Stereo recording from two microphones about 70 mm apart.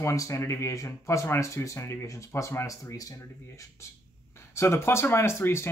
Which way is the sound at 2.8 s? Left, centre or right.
Left.